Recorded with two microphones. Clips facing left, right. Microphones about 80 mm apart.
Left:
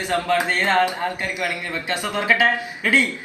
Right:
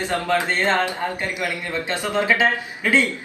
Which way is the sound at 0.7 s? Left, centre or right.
Centre.